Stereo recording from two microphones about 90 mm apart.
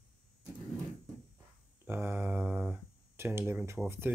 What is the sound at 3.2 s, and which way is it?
Speech, 30° right (ahead or behind).